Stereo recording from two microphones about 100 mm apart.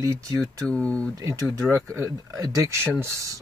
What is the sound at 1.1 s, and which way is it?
Speech, 35° right (ahead or behind).